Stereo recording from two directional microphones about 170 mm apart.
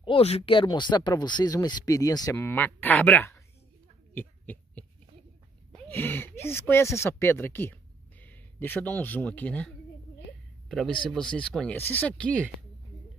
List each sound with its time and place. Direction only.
0.0 s speech: 35° left (ahead or behind); by 3.4 s 15° left (ahead or behind)
4.1 s a sound: 10° left (ahead or behind)
5.9 s speech: 10° left (ahead or behind)
11.1 s speech: 5° left (ahead or behind)